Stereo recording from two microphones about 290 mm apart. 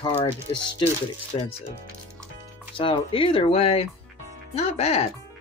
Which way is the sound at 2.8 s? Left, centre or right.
Centre.